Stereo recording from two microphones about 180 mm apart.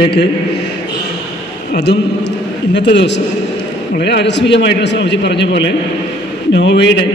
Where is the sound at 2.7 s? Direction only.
75° left (ahead or behind).